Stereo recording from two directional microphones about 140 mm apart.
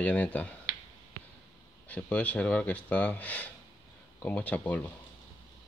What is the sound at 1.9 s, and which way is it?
Speech, 10° left (ahead or behind).